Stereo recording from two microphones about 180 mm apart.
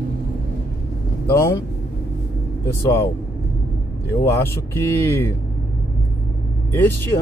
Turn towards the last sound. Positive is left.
turn(degrees=10)  # may be behind; listen again after turning